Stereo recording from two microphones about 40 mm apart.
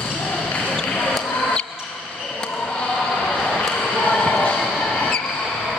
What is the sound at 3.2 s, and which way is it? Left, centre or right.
Basketball bounce, left.